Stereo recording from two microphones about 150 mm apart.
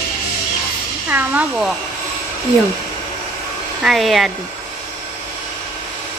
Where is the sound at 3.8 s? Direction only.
Centre (ahead or behind).